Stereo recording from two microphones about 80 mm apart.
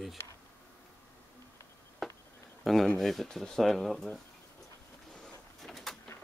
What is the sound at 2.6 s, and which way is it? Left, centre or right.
Speech, centre.